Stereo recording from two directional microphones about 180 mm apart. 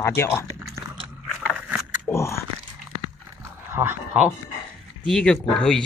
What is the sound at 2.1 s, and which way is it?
Biting, 15° left (ahead or behind).